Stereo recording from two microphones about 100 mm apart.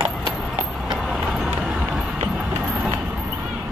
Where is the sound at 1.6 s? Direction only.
Centre (ahead or behind).